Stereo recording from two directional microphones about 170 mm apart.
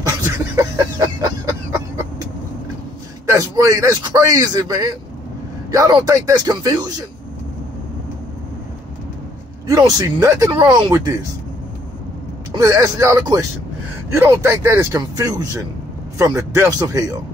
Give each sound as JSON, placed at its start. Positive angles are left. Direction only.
{"t": 0.6, "sound": "cough", "side_deg": -20}
{"t": 3.3, "sound": "a man's voice", "side_deg": -20}
{"t": 9.7, "sound": "a man's voice", "side_deg": -20}
{"t": 12.5, "sound": "a man's voice", "side_deg": -20}